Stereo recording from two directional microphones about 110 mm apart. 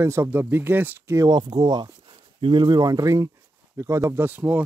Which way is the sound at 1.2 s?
40° right (ahead or behind).